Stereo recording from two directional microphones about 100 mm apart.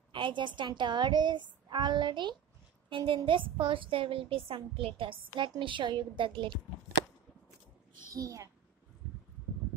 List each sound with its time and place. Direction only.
0.1 s a woman's voice: 55° right (ahead or behind)
8.1 s a child's voice: 35° right (ahead or behind)